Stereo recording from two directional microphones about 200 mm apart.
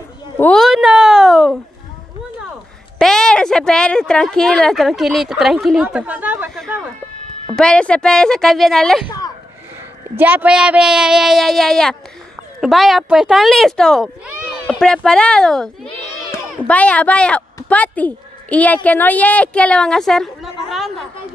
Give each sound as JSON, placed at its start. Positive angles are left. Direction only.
{"t": 0.4, "sound": "a sound", "side_deg": 0}
{"t": 3.0, "sound": "speech", "side_deg": 5}
{"t": 7.4, "sound": "speech", "side_deg": 5}
{"t": 9.0, "sound": "a sound", "side_deg": 20}
{"t": 10.1, "sound": "speech", "side_deg": -10}
{"t": 16.1, "sound": "music", "side_deg": 10}
{"t": 17.6, "sound": "a woman's voice", "side_deg": 5}